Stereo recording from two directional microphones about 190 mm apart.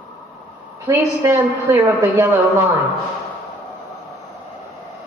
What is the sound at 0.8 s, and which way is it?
A woman's voice, 15° right (ahead or behind).